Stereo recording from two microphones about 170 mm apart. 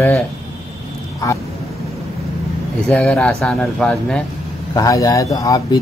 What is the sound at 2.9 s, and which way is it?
Speech, 5° left (ahead or behind).